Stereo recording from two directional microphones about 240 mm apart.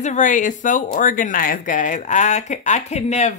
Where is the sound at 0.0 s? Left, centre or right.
Left.